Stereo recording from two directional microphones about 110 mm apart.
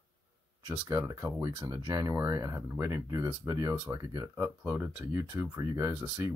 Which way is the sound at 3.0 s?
35° right (ahead or behind).